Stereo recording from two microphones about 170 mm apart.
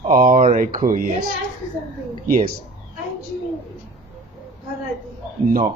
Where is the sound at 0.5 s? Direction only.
50° right (ahead or behind).